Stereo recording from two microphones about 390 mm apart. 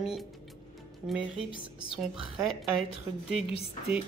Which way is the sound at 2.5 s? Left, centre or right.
Centre.